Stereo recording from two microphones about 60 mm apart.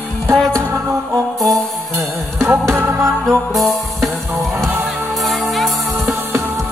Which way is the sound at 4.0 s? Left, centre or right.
Right.